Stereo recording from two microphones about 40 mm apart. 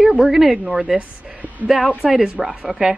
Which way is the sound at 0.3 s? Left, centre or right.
Centre.